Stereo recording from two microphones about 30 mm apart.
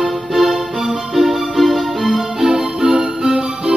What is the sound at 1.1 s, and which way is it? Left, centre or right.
Music, centre.